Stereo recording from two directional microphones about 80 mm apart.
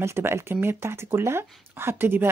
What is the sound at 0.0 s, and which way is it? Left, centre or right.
Speech, right.